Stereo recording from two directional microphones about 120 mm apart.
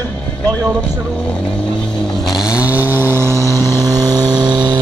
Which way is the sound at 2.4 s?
10° right (ahead or behind).